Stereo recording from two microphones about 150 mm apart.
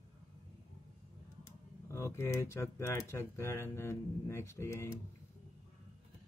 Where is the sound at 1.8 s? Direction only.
15° left (ahead or behind).